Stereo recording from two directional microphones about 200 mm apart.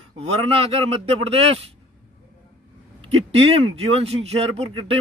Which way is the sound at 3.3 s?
30° right (ahead or behind).